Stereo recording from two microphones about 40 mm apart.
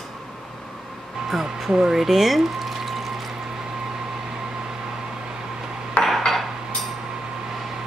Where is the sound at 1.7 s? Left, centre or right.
Centre.